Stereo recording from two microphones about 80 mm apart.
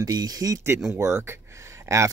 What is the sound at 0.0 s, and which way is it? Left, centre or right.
Speech, right.